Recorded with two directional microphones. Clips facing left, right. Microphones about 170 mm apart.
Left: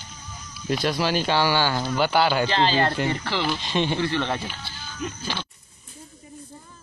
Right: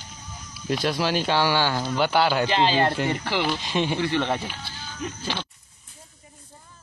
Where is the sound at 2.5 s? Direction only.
15° right (ahead or behind).